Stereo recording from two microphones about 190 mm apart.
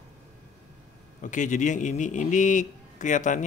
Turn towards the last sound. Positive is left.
turn(degrees=40)  # may be behind; listen again after turning